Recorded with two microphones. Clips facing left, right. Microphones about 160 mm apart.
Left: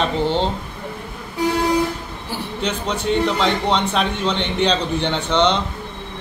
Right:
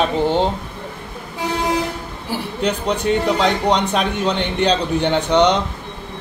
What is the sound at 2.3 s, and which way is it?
Speech, 40° right (ahead or behind).